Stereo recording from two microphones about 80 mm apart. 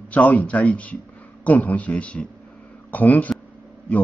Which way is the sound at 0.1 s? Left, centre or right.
Centre.